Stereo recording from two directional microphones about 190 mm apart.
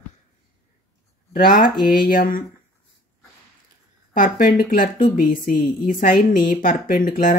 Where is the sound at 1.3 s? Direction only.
45° left (ahead or behind).